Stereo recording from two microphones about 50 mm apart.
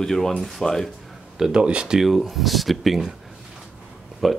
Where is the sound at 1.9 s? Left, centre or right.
Centre.